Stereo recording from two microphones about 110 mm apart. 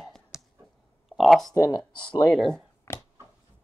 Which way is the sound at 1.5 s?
35° left (ahead or behind).